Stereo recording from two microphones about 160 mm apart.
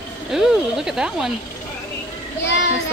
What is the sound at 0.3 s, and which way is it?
Speech, 5° right (ahead or behind).